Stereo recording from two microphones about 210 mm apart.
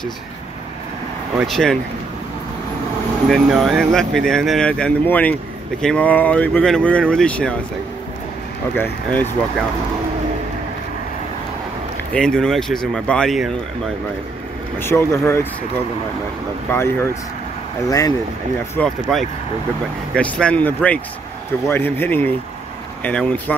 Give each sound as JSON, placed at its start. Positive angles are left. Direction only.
{"t": 1.4, "sound": "speech", "side_deg": 0}
{"t": 3.3, "sound": "speech", "side_deg": 0}
{"t": 8.7, "sound": "speech", "side_deg": 10}
{"t": 12.1, "sound": "speech", "side_deg": 5}
{"t": 14.8, "sound": "speech", "side_deg": 10}
{"t": 16.7, "sound": "speech", "side_deg": 10}
{"t": 18.8, "sound": "speech", "side_deg": 0}